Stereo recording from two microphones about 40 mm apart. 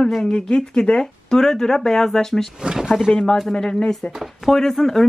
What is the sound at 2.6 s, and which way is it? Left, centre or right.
Speech, centre.